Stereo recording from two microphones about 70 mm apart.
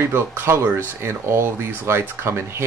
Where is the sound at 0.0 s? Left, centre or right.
Right.